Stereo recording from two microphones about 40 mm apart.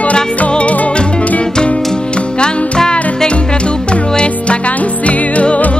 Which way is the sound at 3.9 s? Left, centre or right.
Left.